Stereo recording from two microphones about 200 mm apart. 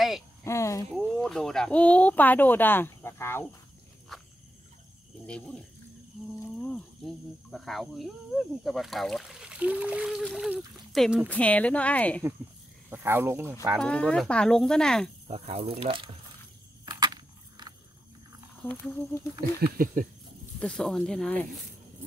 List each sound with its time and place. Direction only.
0.4 s cricket: 15° left (ahead or behind)
0.9 s speech: centre (ahead or behind)
5.2 s speech: 5° left (ahead or behind)
6.5 s a sound: 5° left (ahead or behind)
7.5 s speech: centre (ahead or behind)
12.9 s speech: 10° right (ahead or behind)
13.7 s speech: 5° left (ahead or behind)
15.2 s speech: 30° right (ahead or behind)
16.8 s a sound: 20° right (ahead or behind)
18.6 s speech: 5° left (ahead or behind)
19.6 s a sound: 45° right (ahead or behind)
20.5 s speech: 5° left (ahead or behind)